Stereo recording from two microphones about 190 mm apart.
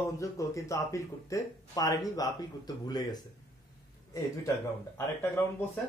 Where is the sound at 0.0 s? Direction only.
15° left (ahead or behind).